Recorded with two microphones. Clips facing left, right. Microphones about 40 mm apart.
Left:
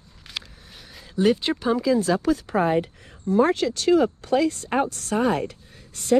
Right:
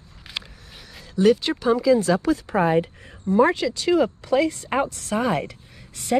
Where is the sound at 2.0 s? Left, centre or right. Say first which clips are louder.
Right 1 dB; right.